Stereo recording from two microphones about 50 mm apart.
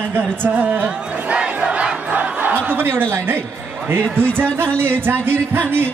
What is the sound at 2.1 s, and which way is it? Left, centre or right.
Battle cry, right.